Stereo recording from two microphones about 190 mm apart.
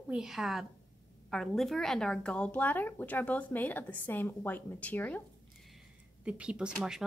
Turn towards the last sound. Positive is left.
turn(degrees=-5)  # may be behind; listen again after turning